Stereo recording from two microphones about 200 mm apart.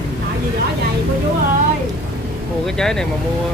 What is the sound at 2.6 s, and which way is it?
Speech, 5° left (ahead or behind).